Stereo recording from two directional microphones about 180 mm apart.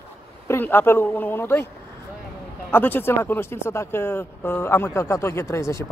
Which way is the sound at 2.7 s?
10° left (ahead or behind).